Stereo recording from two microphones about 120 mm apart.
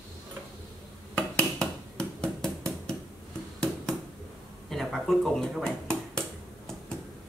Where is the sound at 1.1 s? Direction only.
5° left (ahead or behind).